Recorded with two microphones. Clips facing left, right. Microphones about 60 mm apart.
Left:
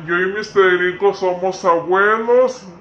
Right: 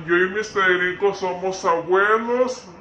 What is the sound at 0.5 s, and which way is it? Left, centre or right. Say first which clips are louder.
Mantra: left 7 dB; centre.